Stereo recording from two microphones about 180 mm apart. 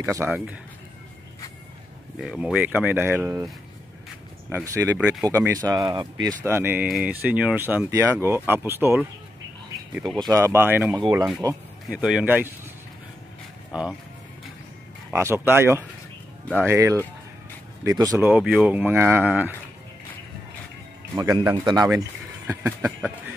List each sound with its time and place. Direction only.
0.0 s speech: 15° right (ahead or behind)
2.1 s speech: 5° right (ahead or behind)
4.5 s speech: 10° right (ahead or behind)
10.1 s a man's voice: 20° right (ahead or behind)
11.9 s a man's voice: 5° right (ahead or behind)
13.7 s speech: 5° right (ahead or behind)
15.0 s a man's voice: 15° right (ahead or behind)
18.3 s speech: 5° right (ahead or behind)
21.2 s a man's voice: 20° right (ahead or behind); by 23.1 s 5° right (ahead or behind)